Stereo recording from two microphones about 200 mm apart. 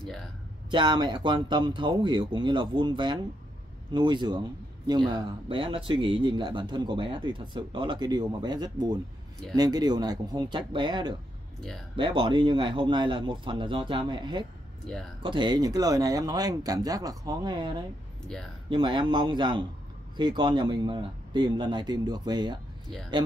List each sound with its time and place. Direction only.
0.7 s speech: 25° right (ahead or behind)